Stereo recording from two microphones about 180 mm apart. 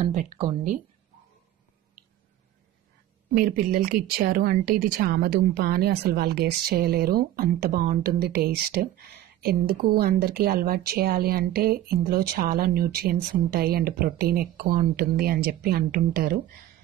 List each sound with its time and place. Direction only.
0.0 s speech: 45° right (ahead or behind)
3.7 s a woman's voice: 55° right (ahead or behind)